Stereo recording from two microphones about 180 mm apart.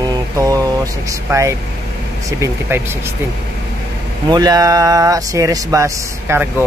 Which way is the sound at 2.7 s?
15° right (ahead or behind).